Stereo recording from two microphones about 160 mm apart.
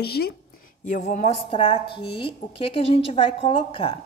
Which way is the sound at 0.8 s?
55° left (ahead or behind).